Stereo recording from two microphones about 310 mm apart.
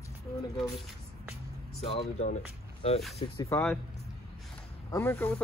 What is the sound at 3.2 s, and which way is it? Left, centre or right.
Speech, centre.